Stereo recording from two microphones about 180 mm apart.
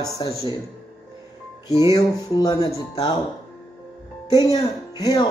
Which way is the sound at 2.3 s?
20° left (ahead or behind).